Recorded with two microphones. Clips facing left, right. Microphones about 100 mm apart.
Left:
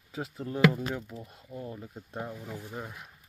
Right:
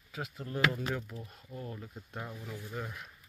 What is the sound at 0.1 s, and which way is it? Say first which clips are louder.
Speech: left 4 dB; 30° left (ahead or behind).